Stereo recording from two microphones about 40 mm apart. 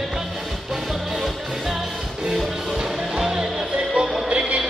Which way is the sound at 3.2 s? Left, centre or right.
Centre.